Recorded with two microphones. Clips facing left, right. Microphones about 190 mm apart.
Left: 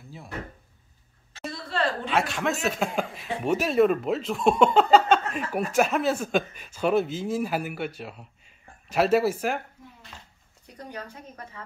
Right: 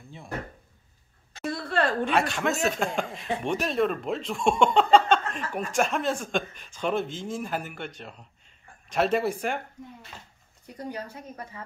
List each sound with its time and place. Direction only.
1.5 s a sound: 55° right (ahead or behind)
2.0 s speech: centre (ahead or behind)
10.8 s a woman's voice: 10° right (ahead or behind)